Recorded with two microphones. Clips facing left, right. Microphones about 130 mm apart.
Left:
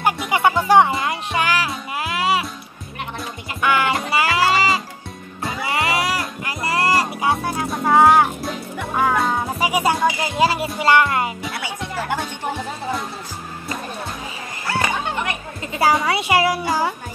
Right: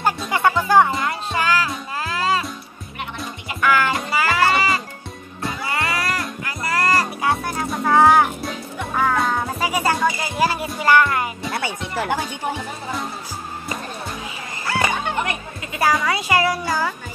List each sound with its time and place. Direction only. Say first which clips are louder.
0.0 s music: left 1 dB; 15° left (ahead or behind)
3.6 s music: even; 20° left (ahead or behind)
6.4 s music: left 1 dB; 25° left (ahead or behind); by 9.4 s 5° left (ahead or behind)
9.6 s music: left 2 dB; 15° left (ahead or behind)
12.1 s music: right 1 dB; centre (ahead or behind)
15.8 s music: left 2 dB; 25° left (ahead or behind)